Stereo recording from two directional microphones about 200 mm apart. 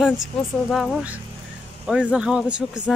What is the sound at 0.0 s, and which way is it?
A woman's voice, centre (ahead or behind).